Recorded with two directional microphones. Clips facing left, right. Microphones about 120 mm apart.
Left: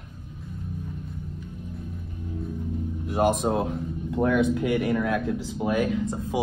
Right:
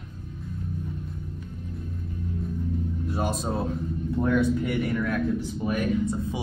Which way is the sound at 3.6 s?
90° left.